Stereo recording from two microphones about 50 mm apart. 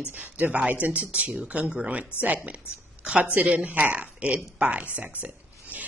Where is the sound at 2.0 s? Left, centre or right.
Right.